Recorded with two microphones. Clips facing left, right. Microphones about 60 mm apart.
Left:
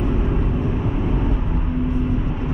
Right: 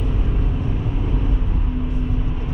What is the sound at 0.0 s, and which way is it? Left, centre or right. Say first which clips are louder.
Vehicle: left 5 dB; left.